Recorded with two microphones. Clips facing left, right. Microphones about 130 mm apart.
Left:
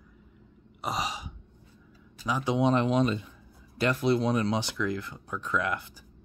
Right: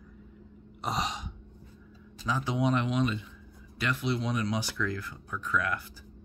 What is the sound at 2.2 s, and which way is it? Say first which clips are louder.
Speech: left 3 dB; 15° left (ahead or behind).